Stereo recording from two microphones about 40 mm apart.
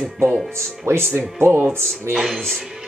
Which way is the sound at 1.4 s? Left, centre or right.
Right.